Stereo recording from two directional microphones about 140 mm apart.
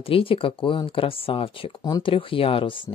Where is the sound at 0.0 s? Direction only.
40° left (ahead or behind).